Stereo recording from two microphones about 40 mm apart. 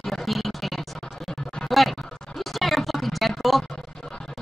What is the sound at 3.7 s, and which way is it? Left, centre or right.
Music, centre.